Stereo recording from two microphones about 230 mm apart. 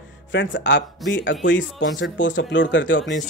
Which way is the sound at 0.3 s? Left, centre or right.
Left.